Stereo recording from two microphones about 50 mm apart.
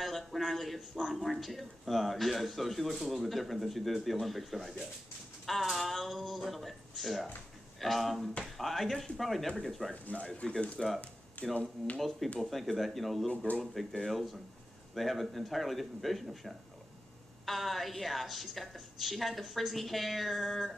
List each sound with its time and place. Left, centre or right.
0.0 s speech: centre
10.2 s speech: centre
12.4 s speech: centre